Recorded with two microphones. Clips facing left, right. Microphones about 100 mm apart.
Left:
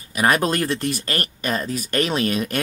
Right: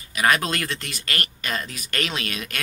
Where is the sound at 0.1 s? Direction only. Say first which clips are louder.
Left 3 dB; 40° left (ahead or behind).